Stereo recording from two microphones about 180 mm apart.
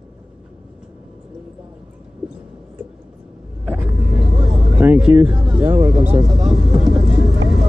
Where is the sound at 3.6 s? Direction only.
10° right (ahead or behind).